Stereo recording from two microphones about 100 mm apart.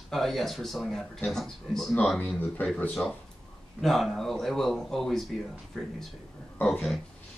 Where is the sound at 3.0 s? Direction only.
20° left (ahead or behind).